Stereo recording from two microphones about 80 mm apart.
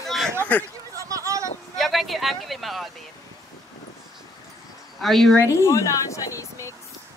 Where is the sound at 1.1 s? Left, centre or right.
Right.